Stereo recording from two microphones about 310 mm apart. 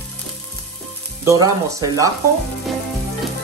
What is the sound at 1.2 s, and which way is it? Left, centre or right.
Speech, centre.